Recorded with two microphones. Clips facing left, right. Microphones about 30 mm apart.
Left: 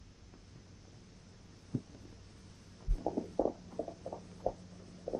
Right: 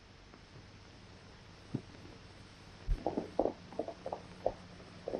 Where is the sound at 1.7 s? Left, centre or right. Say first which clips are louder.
Left 2 dB; right.